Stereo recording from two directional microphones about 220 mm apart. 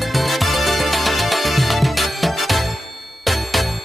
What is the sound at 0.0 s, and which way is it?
Music, centre (ahead or behind).